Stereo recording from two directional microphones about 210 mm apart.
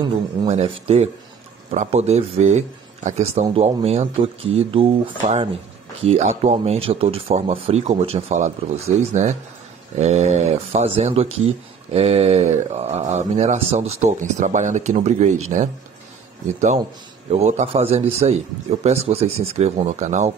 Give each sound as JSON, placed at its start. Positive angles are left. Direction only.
{"t": 0.0, "sound": "a man's voice", "side_deg": -25}